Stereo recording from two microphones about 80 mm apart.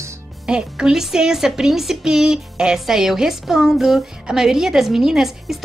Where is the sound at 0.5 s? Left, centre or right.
Centre.